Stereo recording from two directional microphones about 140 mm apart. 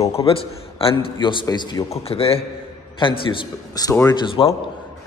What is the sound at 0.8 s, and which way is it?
A man's voice, 40° left (ahead or behind).